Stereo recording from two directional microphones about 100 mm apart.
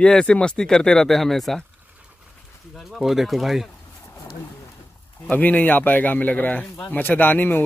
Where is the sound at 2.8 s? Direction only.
Centre (ahead or behind).